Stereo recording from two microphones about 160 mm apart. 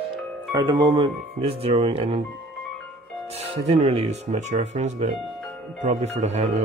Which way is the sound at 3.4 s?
40° right (ahead or behind).